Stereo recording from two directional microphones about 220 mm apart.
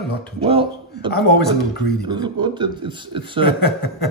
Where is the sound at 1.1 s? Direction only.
45° left (ahead or behind).